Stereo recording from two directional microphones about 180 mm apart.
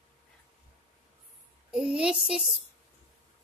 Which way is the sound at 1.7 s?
5° right (ahead or behind).